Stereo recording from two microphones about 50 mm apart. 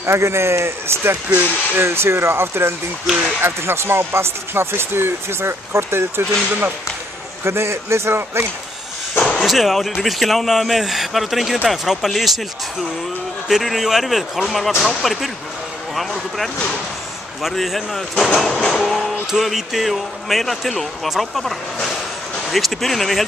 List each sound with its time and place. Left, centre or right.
0.0 s speech: right
7.4 s speech: right
9.2 s a sound: centre
9.5 s speech: centre
13.5 s speech: centre
18.8 s music: centre
19.3 s speech: centre